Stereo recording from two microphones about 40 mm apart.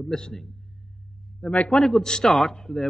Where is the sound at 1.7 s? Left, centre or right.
Centre.